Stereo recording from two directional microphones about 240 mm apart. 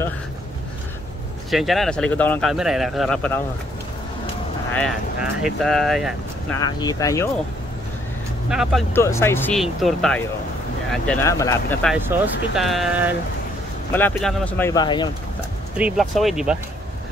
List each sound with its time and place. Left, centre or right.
1.5 s speech: centre
4.7 s speech: centre
6.6 s speech: centre
8.5 s speech: centre
8.9 s speech: centre
11.9 s speech: centre
15.8 s speech: centre